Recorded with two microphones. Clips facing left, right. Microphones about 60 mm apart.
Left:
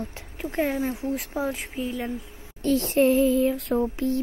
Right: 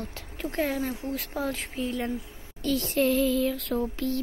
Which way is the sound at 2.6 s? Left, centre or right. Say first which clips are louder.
Left 5 dB; left.